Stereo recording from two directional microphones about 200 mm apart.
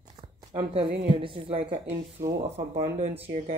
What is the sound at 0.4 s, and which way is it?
Speech, 20° right (ahead or behind).